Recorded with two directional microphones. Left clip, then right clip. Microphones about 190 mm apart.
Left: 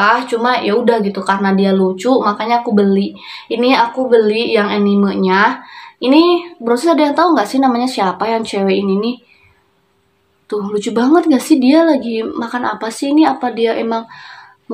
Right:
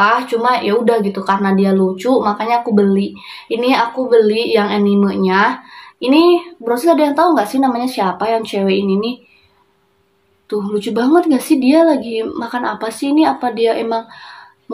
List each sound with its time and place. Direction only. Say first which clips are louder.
0.0 s speech: even; 5° left (ahead or behind)
10.5 s speech: left 1 dB; 10° left (ahead or behind)